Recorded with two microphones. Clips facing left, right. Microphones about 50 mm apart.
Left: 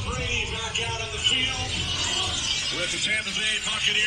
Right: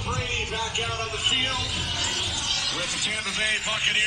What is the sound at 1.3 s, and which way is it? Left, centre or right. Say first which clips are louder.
Speech: right 1 dB; left.